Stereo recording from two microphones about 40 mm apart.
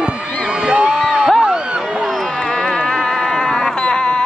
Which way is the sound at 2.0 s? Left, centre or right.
Centre.